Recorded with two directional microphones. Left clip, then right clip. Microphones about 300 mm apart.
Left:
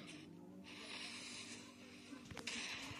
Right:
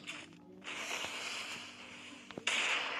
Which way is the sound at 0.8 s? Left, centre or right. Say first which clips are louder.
Right 10 dB; right.